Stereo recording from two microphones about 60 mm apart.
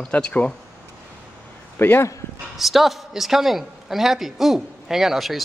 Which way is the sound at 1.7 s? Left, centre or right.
Left.